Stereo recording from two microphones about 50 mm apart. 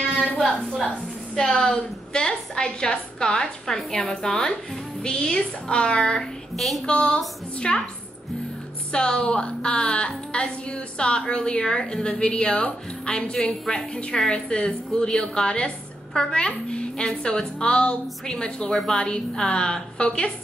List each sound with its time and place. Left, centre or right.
0.4 s a woman's voice: centre
8.9 s a woman's voice: centre